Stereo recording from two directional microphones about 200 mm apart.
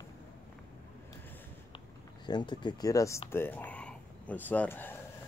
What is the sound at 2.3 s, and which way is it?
Speech, 20° left (ahead or behind).